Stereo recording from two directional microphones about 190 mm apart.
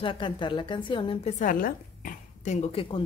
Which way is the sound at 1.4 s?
45° left (ahead or behind).